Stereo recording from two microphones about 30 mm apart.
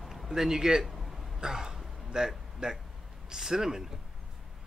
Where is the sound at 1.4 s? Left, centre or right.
Centre.